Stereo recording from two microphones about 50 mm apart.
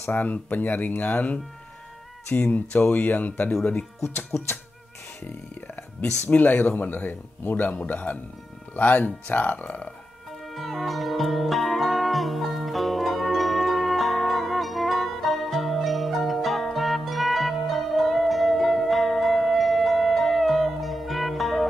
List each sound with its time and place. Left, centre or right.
0.1 s speech: left
5.9 s speech: left
10.5 s music: centre